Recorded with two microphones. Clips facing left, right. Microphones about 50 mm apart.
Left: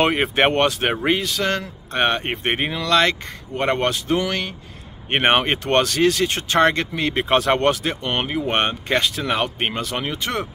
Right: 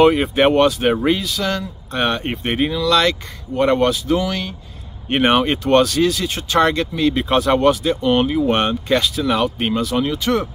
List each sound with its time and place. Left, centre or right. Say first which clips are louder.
0.0 s speech: right 4 dB; left